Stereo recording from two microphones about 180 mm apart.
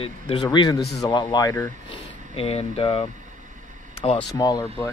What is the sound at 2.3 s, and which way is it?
Speech, 35° left (ahead or behind).